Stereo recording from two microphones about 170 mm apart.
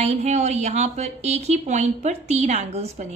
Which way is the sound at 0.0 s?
40° right (ahead or behind).